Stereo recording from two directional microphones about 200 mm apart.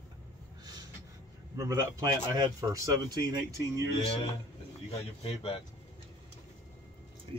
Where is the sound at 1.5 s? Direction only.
15° right (ahead or behind).